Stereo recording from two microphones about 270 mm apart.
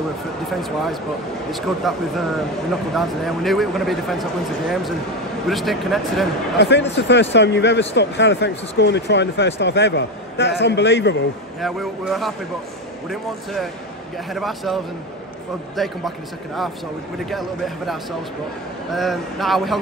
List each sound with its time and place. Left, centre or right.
0.6 s speech: centre
6.6 s speech: left
11.6 s speech: centre
15.8 s speech: centre
17.3 s speech: centre